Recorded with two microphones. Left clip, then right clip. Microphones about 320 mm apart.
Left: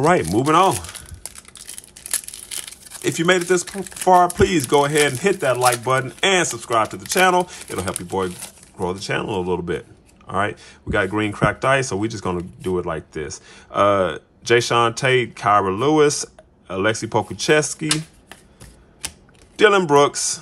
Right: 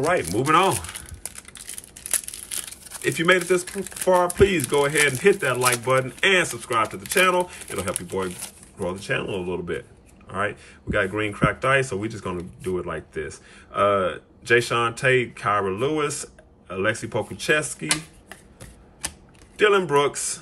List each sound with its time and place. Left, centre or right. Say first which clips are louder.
0.1 s speech: left 3 dB; centre
2.0 s crumpling: left 1 dB; centre
4.2 s speech: left 3 dB; centre
19.0 s typing: left 1 dB; centre
19.5 s speech: left 5 dB; centre